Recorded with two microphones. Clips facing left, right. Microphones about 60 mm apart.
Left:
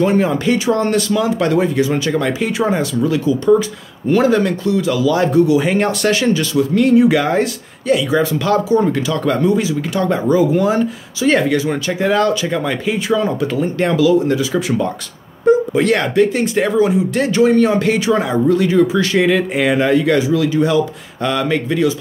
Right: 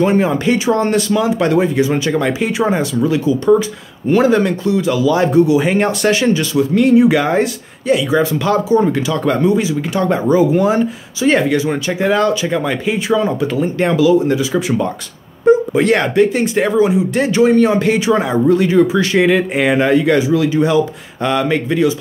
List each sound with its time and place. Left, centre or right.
0.0 s speech: centre